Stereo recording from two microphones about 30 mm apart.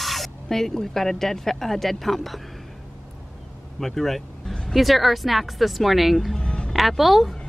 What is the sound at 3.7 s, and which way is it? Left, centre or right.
Vehicle, centre.